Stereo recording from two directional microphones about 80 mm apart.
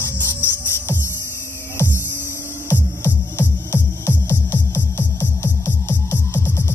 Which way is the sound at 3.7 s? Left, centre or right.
Left.